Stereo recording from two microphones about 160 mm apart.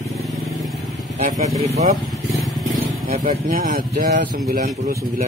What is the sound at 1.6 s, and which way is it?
Speech, 45° right (ahead or behind).